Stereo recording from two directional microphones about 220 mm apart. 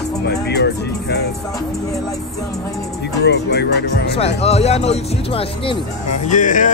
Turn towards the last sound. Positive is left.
turn(degrees=35)  # may be behind; listen again after turning